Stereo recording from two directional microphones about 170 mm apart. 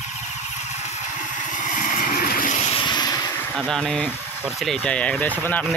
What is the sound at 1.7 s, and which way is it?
Vehicle, 50° left (ahead or behind).